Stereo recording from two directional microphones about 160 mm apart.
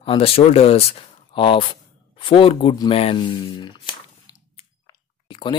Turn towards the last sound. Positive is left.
turn(degrees=30)  # may be behind; listen again after turning